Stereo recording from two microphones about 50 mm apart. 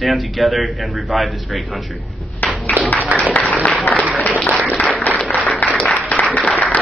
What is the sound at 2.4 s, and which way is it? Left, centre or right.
Clapping, left.